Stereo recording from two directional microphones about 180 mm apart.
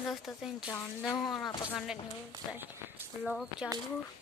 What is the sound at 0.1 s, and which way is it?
Speech, 5° right (ahead or behind).